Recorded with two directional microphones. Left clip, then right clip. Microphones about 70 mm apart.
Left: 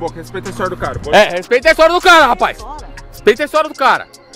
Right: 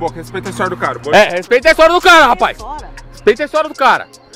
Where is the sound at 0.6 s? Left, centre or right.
Right.